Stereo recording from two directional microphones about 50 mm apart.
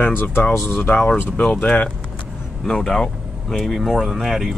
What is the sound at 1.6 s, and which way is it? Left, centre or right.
Speech, left.